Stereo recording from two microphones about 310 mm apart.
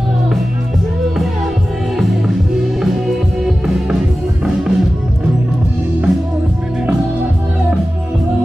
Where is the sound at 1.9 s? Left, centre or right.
Centre.